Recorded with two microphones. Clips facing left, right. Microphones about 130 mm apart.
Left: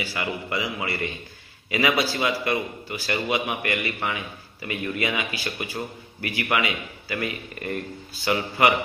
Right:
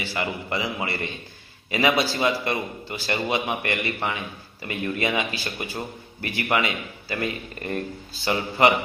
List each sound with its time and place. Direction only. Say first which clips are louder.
0.0 s a man's voice: right 1 dB; 30° right (ahead or behind)